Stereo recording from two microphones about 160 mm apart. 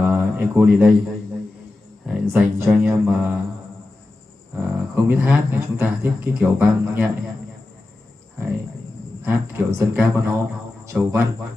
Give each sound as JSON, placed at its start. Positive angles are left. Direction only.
{"t": 0.0, "sound": "a sound", "side_deg": -15}
{"t": 2.0, "sound": "speech", "side_deg": -5}
{"t": 4.6, "sound": "speech", "side_deg": -15}
{"t": 9.2, "sound": "speech", "side_deg": -15}